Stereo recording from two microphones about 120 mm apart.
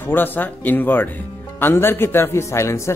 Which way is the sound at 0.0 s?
15° left (ahead or behind).